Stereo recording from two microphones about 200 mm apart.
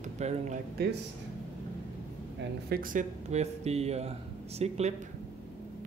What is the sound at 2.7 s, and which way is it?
Speech, 45° right (ahead or behind).